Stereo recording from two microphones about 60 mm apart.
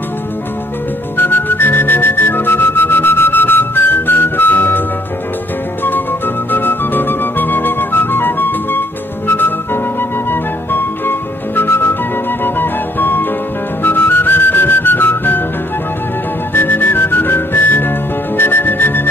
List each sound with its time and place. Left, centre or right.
1.1 s music: left
5.9 s music: left
10.3 s music: left
16.5 s music: left